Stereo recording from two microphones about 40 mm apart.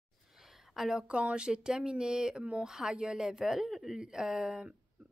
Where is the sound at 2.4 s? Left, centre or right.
Right.